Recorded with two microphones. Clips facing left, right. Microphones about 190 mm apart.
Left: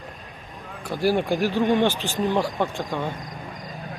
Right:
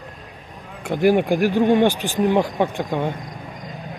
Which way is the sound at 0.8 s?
20° right (ahead or behind).